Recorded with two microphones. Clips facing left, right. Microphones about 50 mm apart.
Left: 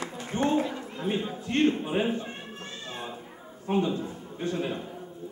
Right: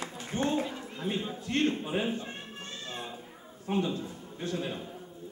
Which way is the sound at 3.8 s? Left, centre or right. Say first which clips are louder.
Left 4 dB; left.